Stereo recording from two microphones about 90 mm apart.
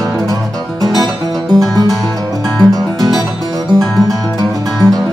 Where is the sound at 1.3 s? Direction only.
Centre (ahead or behind).